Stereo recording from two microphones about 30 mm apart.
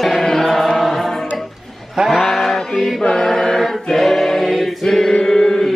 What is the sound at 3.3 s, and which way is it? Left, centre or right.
Chant, centre.